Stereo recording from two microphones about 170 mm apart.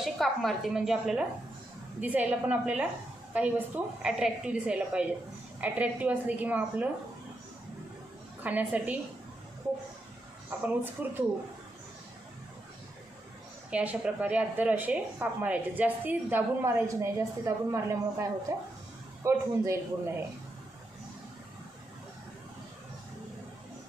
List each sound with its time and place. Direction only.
0.0 s a woman's voice: centre (ahead or behind)
8.5 s a woman's voice: 10° right (ahead or behind)
10.6 s a woman's voice: 10° right (ahead or behind)
13.7 s a woman's voice: 5° right (ahead or behind)